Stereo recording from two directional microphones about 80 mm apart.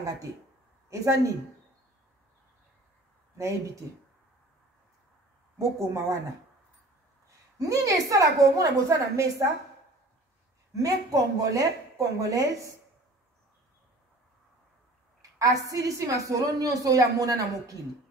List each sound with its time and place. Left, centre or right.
0.8 s speech: right
3.3 s a woman's voice: right
5.6 s a woman's voice: right
7.2 s a woman's voice: right
10.8 s a woman's voice: right
15.3 s a woman's voice: right